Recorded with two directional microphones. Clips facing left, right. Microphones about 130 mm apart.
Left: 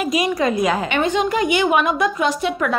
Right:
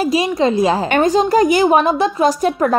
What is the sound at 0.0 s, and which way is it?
A woman's voice, 30° right (ahead or behind).